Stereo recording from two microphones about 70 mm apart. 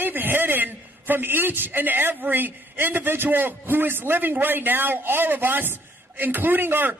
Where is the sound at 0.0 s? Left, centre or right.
Right.